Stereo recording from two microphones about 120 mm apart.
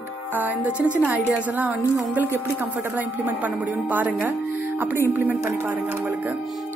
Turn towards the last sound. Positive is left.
turn(degrees=-15)  # may be behind; listen again after turning